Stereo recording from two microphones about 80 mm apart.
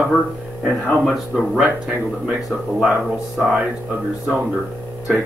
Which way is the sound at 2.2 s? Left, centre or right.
Centre.